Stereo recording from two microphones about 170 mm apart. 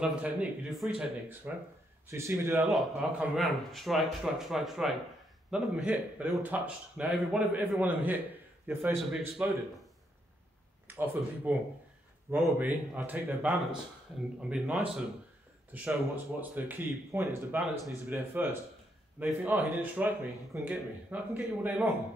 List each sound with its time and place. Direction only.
0.0 s speech: 5° right (ahead or behind)
2.0 s speech: 15° right (ahead or behind)
2.6 s speech: centre (ahead or behind)
10.9 s speech: 10° right (ahead or behind)
17.6 s speech: centre (ahead or behind)
18.0 s speech: 15° right (ahead or behind)